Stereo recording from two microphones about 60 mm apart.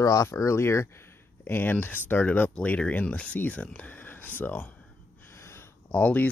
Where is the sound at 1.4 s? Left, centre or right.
Left.